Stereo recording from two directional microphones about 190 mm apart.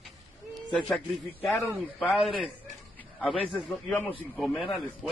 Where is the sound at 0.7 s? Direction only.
5° left (ahead or behind).